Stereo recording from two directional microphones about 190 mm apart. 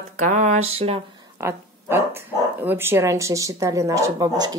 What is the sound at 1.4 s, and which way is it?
Speech, 15° right (ahead or behind).